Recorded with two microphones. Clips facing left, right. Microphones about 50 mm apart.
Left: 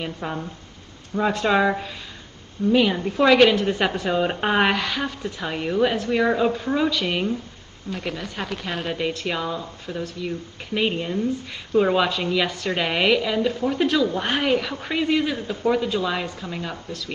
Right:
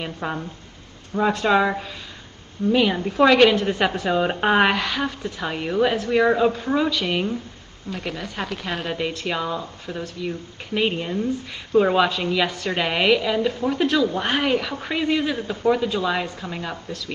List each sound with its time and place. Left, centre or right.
0.0 s speech: centre
1.1 s a woman's voice: centre
10.9 s speech: centre
11.7 s a woman's voice: centre
16.3 s speech: right
16.6 s a woman's voice: centre